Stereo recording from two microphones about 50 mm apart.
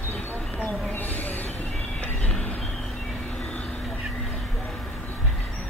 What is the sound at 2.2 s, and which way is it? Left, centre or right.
Vehicle, left.